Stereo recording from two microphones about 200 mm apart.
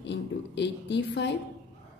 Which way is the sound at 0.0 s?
60° left (ahead or behind).